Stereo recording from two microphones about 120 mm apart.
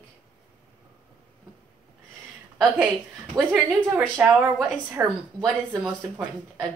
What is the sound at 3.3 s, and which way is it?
Speech, 30° right (ahead or behind).